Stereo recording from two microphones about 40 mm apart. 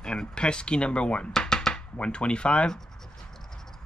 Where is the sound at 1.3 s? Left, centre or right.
Centre.